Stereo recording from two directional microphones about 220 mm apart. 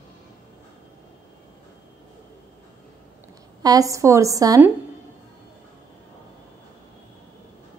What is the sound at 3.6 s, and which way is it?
A woman's voice, 15° right (ahead or behind).